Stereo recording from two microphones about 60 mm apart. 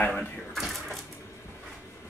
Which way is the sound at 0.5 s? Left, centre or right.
Centre.